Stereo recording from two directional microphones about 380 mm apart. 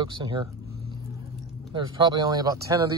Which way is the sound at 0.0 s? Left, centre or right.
Centre.